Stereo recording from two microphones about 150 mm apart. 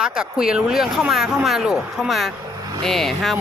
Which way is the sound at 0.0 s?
5° right (ahead or behind).